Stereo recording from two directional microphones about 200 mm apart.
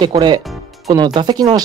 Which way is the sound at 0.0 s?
25° right (ahead or behind).